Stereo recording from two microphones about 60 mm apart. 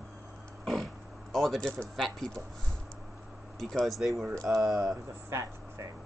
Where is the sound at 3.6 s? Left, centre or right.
Centre.